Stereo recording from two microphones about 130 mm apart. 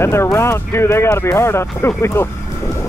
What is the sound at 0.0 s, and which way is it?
Speech, 20° left (ahead or behind).